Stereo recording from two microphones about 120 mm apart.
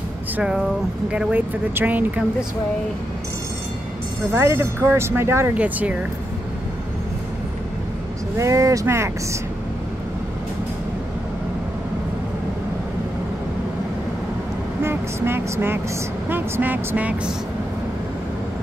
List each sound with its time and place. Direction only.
0.4 s speech: 5° right (ahead or behind)
4.3 s speech: 20° right (ahead or behind)
8.4 s speech: 25° right (ahead or behind)
14.8 s speech: 20° right (ahead or behind)